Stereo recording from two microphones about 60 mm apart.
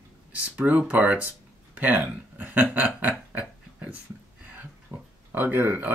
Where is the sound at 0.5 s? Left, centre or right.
Right.